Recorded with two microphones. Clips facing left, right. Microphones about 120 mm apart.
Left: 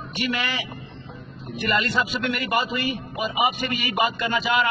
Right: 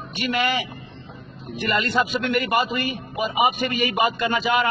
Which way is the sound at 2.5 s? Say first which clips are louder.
Right 2 dB; 45° right (ahead or behind).